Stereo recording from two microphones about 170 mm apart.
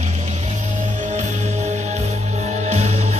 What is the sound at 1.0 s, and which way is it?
Music, 45° right (ahead or behind).